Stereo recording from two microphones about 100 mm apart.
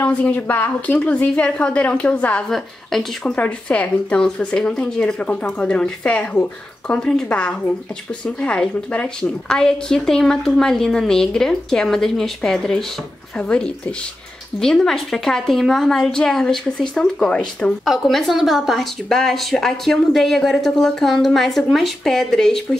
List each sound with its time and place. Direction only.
0.0 s a woman's voice: 15° left (ahead or behind)
3.3 s a woman's voice: 15° left (ahead or behind)
17.8 s a woman's voice: centre (ahead or behind)